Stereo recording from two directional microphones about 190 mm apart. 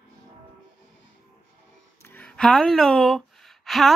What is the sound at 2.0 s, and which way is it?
Speech, 10° left (ahead or behind).